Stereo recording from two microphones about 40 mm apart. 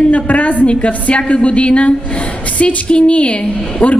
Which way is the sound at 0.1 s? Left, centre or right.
Left.